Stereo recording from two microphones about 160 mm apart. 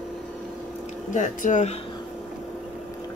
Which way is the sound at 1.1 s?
50° left (ahead or behind).